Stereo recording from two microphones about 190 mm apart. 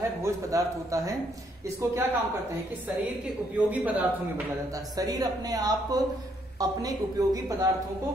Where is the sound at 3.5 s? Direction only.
10° right (ahead or behind).